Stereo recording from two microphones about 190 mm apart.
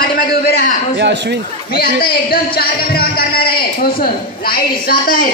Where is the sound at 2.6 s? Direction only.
55° left (ahead or behind).